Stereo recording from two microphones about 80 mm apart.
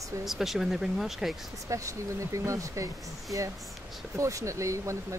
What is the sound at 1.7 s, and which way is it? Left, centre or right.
Speech, right.